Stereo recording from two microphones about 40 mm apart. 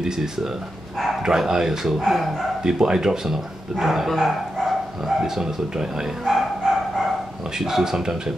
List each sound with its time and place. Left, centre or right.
0.0 s speech: centre
2.6 s speech: centre
6.3 s dog: centre
7.5 s speech: centre